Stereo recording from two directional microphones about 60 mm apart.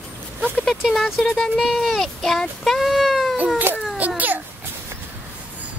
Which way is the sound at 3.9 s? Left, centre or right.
Right.